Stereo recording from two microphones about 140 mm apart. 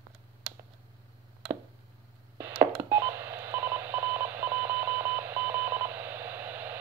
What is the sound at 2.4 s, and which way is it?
Telephone dialing, 20° right (ahead or behind).